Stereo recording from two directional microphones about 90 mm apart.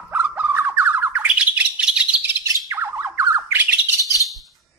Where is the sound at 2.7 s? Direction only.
25° right (ahead or behind).